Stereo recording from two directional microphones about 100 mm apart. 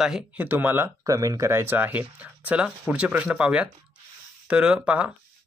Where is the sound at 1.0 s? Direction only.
35° right (ahead or behind).